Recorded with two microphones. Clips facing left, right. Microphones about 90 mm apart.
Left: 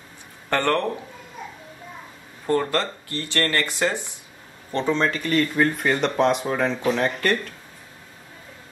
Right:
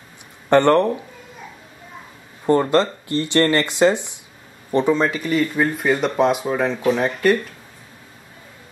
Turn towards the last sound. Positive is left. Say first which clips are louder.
# right 4 dB
turn(degrees=-5)  # may be behind; listen again after turning